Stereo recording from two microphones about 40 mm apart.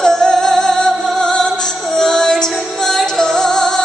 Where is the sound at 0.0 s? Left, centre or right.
Centre.